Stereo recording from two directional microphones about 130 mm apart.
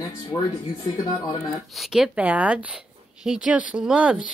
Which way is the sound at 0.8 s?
30° left (ahead or behind).